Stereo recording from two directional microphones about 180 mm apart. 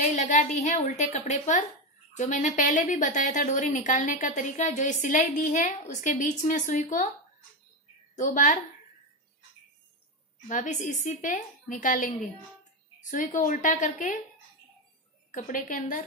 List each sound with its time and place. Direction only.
0.0 s a woman's voice: 40° left (ahead or behind)
8.2 s a woman's voice: 45° left (ahead or behind)
10.5 s a woman's voice: 45° left (ahead or behind)
15.3 s a woman's voice: 45° left (ahead or behind)